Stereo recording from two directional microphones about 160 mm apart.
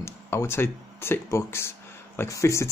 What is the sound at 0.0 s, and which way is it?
Speech, 15° left (ahead or behind).